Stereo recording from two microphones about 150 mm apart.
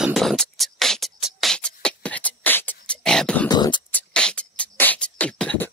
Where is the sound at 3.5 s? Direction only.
30° left (ahead or behind).